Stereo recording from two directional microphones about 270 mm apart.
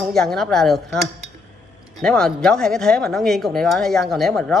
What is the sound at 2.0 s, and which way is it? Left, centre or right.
Speech, centre.